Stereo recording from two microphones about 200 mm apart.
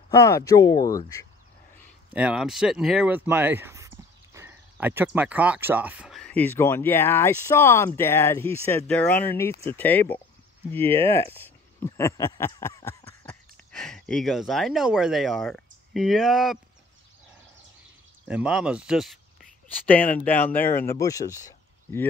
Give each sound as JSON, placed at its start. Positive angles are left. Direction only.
{"t": 0.1, "sound": "speech", "side_deg": 15}
{"t": 2.1, "sound": "speech", "side_deg": -5}
{"t": 18.3, "sound": "speech", "side_deg": -5}
{"t": 19.9, "sound": "speech", "side_deg": 10}